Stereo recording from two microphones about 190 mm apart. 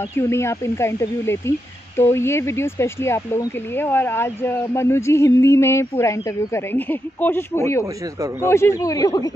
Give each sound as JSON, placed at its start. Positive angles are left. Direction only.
{"t": 0.1, "sound": "speech", "side_deg": 15}
{"t": 7.8, "sound": "speech", "side_deg": -15}
{"t": 8.5, "sound": "speech", "side_deg": 15}